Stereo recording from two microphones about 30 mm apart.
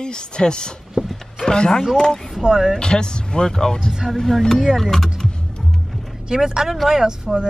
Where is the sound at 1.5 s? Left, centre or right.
Left.